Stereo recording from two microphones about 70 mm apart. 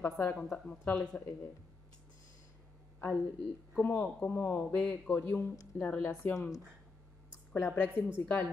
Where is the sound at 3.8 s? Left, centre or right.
Left.